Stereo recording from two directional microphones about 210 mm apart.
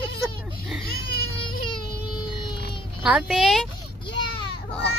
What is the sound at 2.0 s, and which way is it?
Vehicle, 20° left (ahead or behind).